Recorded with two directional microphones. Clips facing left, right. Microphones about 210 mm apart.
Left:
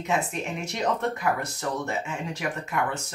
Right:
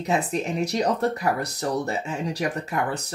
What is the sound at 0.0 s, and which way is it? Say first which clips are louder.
Speech: right 3 dB; 35° right (ahead or behind).